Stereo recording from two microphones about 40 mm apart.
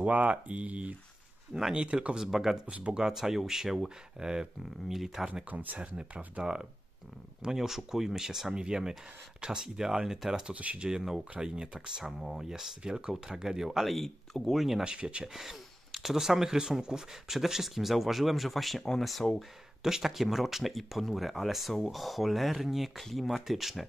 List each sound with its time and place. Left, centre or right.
0.0 s speech: right
1.5 s speech: centre
2.1 s speech: centre
2.6 s speech: right
3.0 s speech: centre
5.2 s speech: right
5.9 s speech: right
6.4 s speech: centre
10.5 s speech: right
10.9 s speech: centre
12.0 s speech: centre
14.8 s speech: right
15.2 s speech: centre
19.8 s speech: centre